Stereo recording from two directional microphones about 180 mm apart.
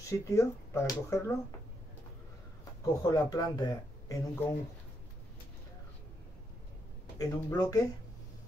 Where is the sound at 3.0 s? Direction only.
20° left (ahead or behind).